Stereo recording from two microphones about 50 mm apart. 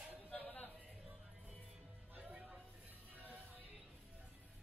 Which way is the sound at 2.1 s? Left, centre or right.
Right.